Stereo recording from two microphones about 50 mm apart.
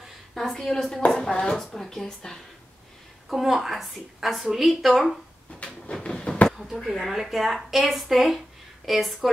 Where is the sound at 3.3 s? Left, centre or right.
Centre.